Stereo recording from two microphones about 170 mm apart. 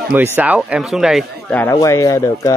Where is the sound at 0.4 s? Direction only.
10° right (ahead or behind).